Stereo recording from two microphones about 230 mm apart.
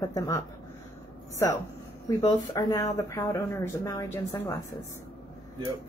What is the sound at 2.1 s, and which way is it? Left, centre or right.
A woman's voice, centre.